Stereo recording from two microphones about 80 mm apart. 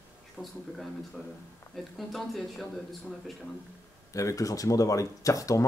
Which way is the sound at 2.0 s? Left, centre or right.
Centre.